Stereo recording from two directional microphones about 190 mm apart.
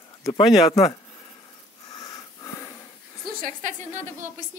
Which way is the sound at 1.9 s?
20° left (ahead or behind).